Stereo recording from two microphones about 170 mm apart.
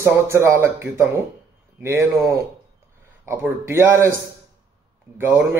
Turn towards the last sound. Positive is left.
turn(degrees=-10)  # may be behind; listen again after turning